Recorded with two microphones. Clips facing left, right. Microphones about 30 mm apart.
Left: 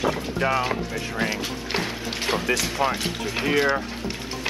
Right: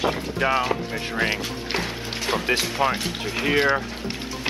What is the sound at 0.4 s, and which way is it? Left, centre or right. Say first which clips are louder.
Speech: right 2 dB; centre.